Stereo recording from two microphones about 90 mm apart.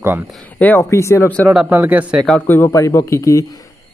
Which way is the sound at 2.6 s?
35° left (ahead or behind).